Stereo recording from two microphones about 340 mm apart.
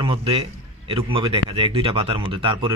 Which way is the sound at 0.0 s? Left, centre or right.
Centre.